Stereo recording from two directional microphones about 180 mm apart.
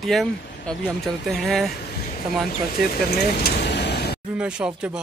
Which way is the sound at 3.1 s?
60° left (ahead or behind).